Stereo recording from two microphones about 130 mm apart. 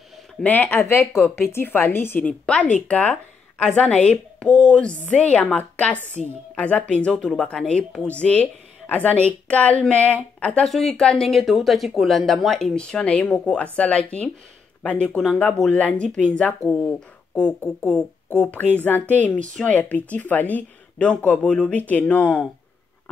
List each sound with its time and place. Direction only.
0.4 s a woman's voice: 10° left (ahead or behind)